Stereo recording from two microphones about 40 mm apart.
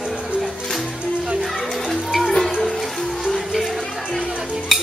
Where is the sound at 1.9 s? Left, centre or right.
Centre.